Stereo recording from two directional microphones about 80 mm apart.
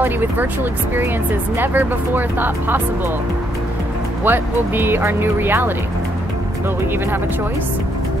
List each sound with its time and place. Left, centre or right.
0.0 s speech: right
1.6 s speech: right
4.2 s speech: right